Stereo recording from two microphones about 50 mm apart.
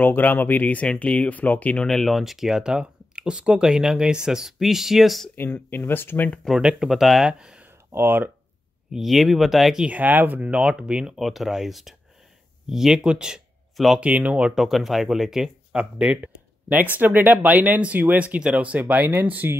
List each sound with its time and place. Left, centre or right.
0.0 s speech: left
1.9 s speech: centre
5.3 s speech: left
6.5 s speech: centre
6.8 s speech: centre
7.2 s speech: centre
7.9 s speech: right
8.9 s speech: centre
9.8 s speech: right
10.5 s speech: centre
11.1 s speech: centre
13.9 s speech: right
14.5 s speech: centre
15.7 s speech: right